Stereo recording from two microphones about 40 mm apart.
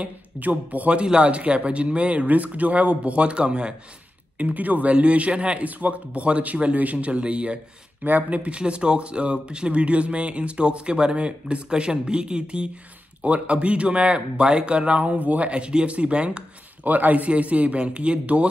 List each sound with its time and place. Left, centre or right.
0.0 s speech: right
0.9 s speech: right
2.2 s speech: right
4.4 s speech: right
4.9 s speech: right
8.0 s speech: right
16.8 s speech: right